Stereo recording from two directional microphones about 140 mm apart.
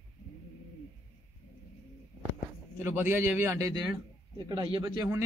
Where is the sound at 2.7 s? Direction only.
15° right (ahead or behind).